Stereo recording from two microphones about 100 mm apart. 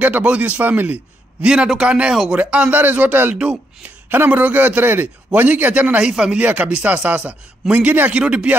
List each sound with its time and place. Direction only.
0.0 s a man's voice: 15° right (ahead or behind)